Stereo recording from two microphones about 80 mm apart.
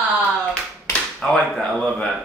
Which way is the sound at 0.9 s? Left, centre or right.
Centre.